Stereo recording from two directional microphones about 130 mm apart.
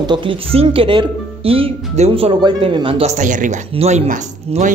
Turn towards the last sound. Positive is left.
turn(degrees=-75)  # may be behind; listen again after turning